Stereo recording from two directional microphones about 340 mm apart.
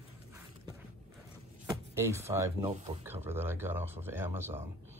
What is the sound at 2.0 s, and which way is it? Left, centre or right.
Speech, centre.